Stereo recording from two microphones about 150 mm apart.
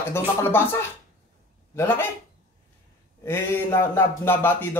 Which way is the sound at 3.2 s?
15° left (ahead or behind).